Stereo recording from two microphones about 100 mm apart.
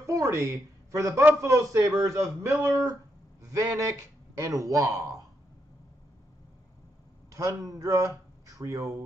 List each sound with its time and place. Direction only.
0.0 s a man's voice: 30° right (ahead or behind)
7.3 s speech: 35° right (ahead or behind)